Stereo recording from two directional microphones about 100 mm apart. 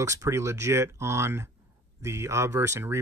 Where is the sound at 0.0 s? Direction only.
30° right (ahead or behind).